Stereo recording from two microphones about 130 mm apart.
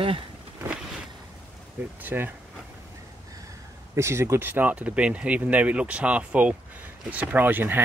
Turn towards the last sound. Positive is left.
turn(degrees=-15)  # may be behind; listen again after turning